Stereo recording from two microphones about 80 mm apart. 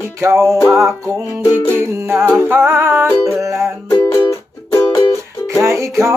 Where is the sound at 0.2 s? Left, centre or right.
Right.